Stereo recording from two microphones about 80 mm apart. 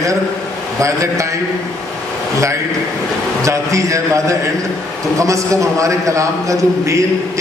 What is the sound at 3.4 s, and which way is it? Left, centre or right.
A man's voice, right.